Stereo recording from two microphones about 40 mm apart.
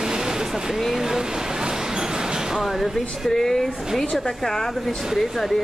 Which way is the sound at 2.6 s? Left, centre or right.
Centre.